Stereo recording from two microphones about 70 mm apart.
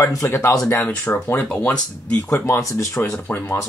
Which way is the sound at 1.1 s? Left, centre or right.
Left.